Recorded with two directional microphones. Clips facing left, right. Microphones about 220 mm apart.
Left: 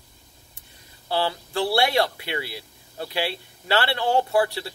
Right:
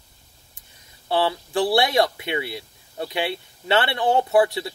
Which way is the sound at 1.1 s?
20° right (ahead or behind).